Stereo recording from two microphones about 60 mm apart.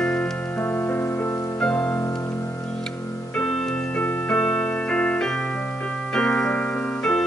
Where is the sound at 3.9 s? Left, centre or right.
Left.